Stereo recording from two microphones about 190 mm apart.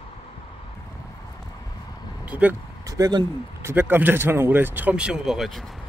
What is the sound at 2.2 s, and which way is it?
Speech, 10° right (ahead or behind).